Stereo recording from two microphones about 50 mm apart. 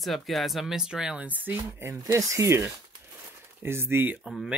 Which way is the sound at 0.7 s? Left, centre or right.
Centre.